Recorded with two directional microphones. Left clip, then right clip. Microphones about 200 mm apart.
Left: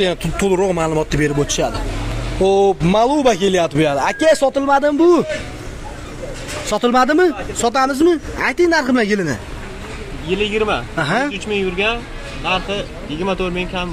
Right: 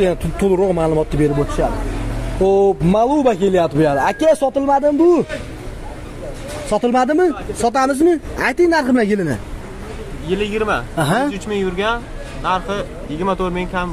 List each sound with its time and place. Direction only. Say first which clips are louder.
0.0 s speech: right 1 dB; 5° right (ahead or behind)
2.4 s speech: even; 10° right (ahead or behind)
6.7 s speech: left 1 dB; centre (ahead or behind)
10.2 s speech: left 1 dB; centre (ahead or behind)
11.0 s speech: even; 15° right (ahead or behind)
11.3 s speech: left 1 dB; 35° right (ahead or behind)
12.4 s speech: even; centre (ahead or behind)